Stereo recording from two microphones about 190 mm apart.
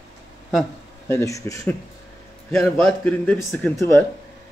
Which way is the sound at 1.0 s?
15° left (ahead or behind).